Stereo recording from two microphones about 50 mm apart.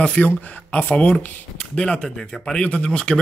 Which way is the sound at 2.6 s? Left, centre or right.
Left.